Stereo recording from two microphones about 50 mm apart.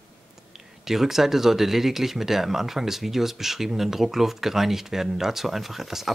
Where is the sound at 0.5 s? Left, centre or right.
Centre.